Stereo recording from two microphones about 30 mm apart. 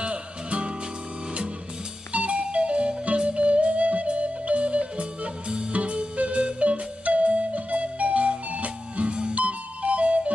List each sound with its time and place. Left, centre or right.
0.0 s music: right
2.1 s music: right